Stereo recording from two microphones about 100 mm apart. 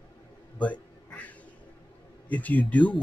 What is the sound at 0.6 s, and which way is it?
Quack, 15° left (ahead or behind).